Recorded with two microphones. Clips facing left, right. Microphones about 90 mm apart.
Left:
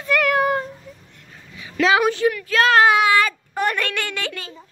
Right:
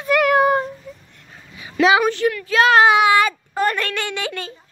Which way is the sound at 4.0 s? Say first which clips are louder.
Right 2 dB; 5° right (ahead or behind).